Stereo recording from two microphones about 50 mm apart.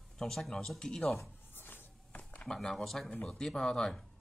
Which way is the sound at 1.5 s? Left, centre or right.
Left.